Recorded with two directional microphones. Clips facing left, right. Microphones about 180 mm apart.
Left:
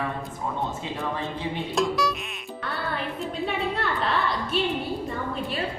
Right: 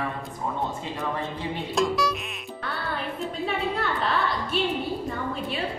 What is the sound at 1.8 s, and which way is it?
Music, centre (ahead or behind).